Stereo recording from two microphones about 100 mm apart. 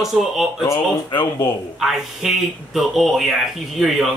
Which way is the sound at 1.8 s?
Centre (ahead or behind).